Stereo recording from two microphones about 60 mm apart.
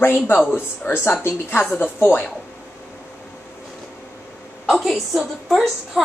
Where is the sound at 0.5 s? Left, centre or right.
Left.